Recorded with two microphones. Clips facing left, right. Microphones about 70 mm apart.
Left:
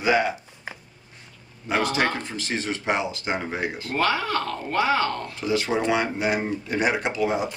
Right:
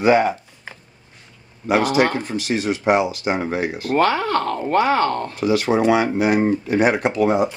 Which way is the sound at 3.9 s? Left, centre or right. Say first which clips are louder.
Right 6 dB; right.